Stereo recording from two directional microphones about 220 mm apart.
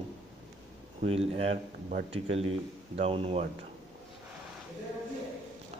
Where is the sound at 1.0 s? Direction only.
25° right (ahead or behind).